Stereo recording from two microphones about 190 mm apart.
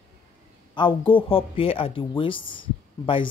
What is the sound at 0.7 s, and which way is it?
Speech, 25° left (ahead or behind).